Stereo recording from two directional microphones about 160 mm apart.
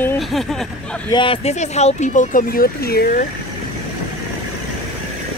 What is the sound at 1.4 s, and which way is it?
Speech, 45° left (ahead or behind).